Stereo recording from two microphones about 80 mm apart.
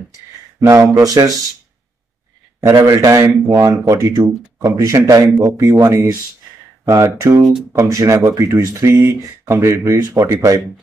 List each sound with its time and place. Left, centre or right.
0.6 s speech: right
2.8 s speech: right